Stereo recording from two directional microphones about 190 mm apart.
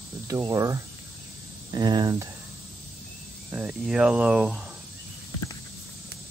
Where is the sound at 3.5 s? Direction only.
5° right (ahead or behind).